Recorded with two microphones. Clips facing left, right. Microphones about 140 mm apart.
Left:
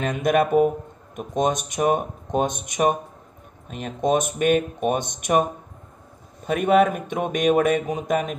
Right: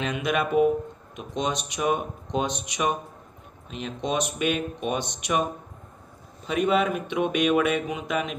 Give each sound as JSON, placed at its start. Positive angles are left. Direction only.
{"t": 0.0, "sound": "speech", "side_deg": 50}
{"t": 6.4, "sound": "speech", "side_deg": 50}